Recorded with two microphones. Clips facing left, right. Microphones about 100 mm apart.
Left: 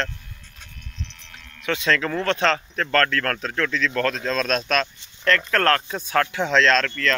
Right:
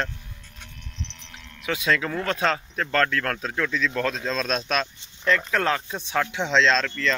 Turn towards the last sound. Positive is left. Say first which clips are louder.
# left 2 dB
turn(degrees=-5)  # may be behind; listen again after turning